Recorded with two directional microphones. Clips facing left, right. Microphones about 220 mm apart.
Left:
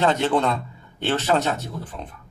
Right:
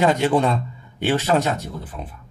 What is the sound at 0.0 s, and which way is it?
Speech, 10° right (ahead or behind).